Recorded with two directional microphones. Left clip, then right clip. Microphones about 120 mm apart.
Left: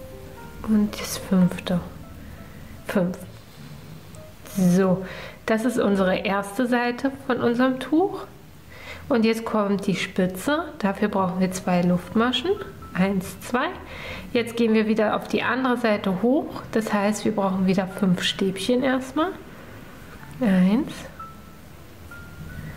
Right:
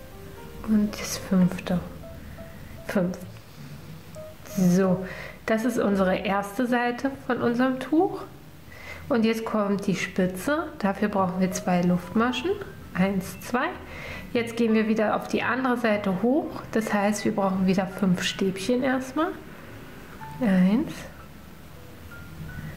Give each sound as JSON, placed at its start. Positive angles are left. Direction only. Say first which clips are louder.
{"t": 0.7, "sound": "a woman's voice", "louder": "left 2 dB", "side_deg": 25}
{"t": 2.9, "sound": "a woman's voice", "louder": "left 2 dB", "side_deg": 25}
{"t": 4.6, "sound": "a woman's voice", "louder": "left 2 dB", "side_deg": 25}
{"t": 20.3, "sound": "speech", "louder": "left 2 dB", "side_deg": 20}